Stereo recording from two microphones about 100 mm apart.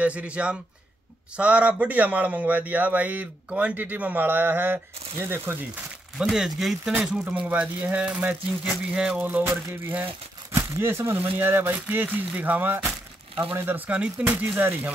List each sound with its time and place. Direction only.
0.0 s a man's voice: 15° right (ahead or behind)
6.1 s speech: 5° right (ahead or behind)
6.8 s a man's voice: 15° right (ahead or behind)
9.7 s a man's voice: 20° right (ahead or behind)